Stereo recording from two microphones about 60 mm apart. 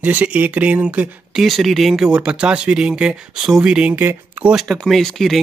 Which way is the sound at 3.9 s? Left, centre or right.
Right.